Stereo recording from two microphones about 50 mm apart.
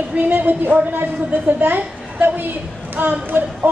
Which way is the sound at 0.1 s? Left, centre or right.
Right.